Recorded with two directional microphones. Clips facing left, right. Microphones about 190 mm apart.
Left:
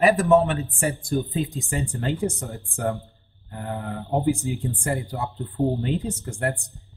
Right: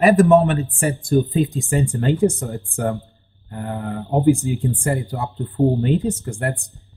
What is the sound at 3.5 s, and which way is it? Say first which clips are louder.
Speech: right 4 dB; 55° right (ahead or behind).